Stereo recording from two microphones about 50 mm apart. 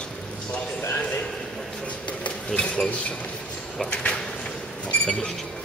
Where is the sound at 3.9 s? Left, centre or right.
Left.